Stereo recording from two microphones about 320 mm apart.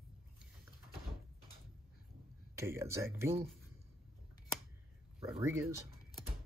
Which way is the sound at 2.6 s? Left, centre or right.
Centre.